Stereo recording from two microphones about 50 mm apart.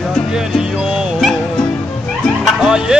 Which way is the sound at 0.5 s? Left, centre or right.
Centre.